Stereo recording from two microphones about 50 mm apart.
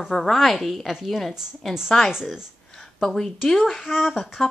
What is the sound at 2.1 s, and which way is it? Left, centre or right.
Speech, centre.